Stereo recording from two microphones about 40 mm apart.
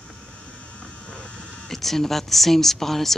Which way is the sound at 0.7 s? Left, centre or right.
Left.